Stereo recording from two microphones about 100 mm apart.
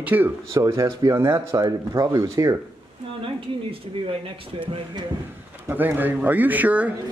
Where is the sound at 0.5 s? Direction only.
35° right (ahead or behind).